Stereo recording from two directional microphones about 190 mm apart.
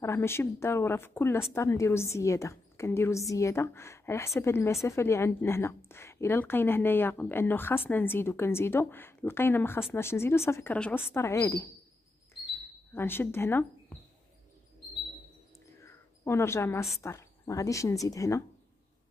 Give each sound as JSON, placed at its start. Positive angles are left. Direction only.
{"t": 0.0, "sound": "speech", "side_deg": 15}
{"t": 12.9, "sound": "speech", "side_deg": 10}
{"t": 15.8, "sound": "cricket", "side_deg": 15}
{"t": 17.0, "sound": "speech", "side_deg": 15}